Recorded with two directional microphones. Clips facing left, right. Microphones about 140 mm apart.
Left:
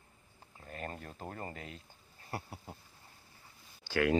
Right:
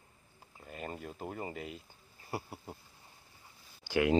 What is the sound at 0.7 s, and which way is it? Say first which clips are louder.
Speech: right 1 dB; 5° right (ahead or behind).